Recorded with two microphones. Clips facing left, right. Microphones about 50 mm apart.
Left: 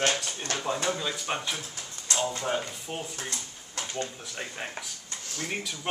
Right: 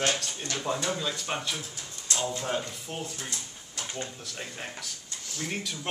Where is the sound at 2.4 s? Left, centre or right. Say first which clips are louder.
Left 1 dB; centre.